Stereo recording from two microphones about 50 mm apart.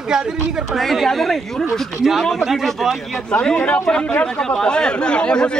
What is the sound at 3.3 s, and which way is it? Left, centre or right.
Speech, left.